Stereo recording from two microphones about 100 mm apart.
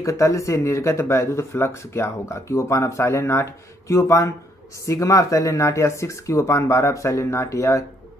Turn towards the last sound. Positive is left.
turn(degrees=30)  # may be behind; listen again after turning